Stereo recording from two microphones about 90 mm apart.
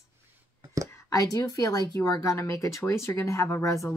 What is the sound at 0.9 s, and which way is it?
Speech, 35° left (ahead or behind).